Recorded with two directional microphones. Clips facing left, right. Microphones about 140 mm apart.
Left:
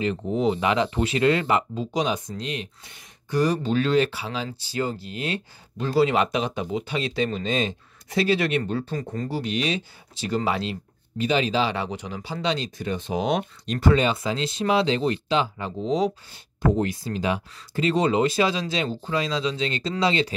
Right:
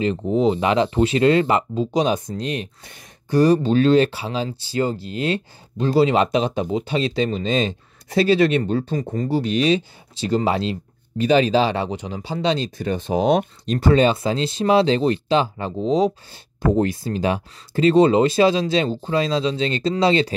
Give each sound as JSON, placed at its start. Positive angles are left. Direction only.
{"t": 0.0, "sound": "speech", "side_deg": -25}
{"t": 9.4, "sound": "speech", "side_deg": -35}
{"t": 11.2, "sound": "speech", "side_deg": -40}